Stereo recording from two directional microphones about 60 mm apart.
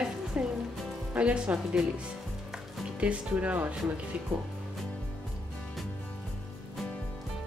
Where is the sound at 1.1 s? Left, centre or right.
Centre.